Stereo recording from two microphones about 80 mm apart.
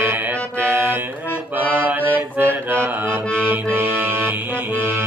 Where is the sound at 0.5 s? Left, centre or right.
Right.